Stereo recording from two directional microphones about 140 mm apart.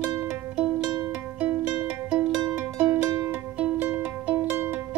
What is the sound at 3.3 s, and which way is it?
Music, 10° right (ahead or behind).